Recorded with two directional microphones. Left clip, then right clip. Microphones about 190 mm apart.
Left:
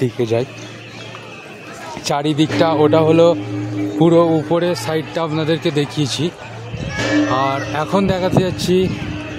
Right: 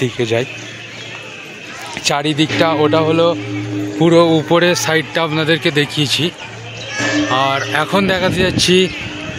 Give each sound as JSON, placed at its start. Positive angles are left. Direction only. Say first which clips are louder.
{"t": 0.0, "sound": "speech", "louder": "right 1 dB", "side_deg": 5}
{"t": 2.0, "sound": "speech", "louder": "right 2 dB", "side_deg": 10}
{"t": 2.9, "sound": "speech", "louder": "left 1 dB", "side_deg": 25}
{"t": 4.0, "sound": "a man's voice", "louder": "right 2 dB", "side_deg": 0}
{"t": 7.3, "sound": "a man's voice", "louder": "right 3 dB", "side_deg": 0}